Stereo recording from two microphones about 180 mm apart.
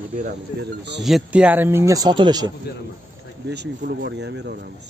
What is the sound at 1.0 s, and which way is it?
Speech, 5° right (ahead or behind).